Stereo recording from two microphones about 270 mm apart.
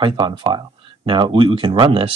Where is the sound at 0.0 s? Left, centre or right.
Centre.